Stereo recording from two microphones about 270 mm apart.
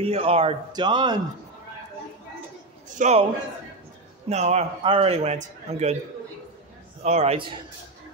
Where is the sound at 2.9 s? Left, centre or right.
Right.